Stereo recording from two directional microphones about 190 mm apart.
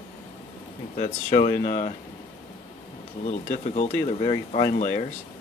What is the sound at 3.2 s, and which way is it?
Speech, 40° left (ahead or behind).